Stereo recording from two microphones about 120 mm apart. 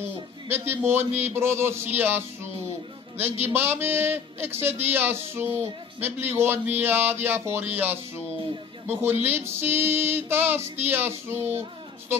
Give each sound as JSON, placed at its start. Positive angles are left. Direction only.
{"t": 0.5, "sound": "speech", "side_deg": -20}